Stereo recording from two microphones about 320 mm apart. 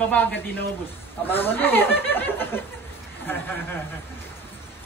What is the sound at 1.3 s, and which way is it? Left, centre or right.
Speech, centre.